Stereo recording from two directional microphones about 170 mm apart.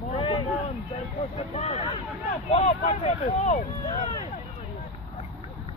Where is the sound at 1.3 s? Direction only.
35° left (ahead or behind).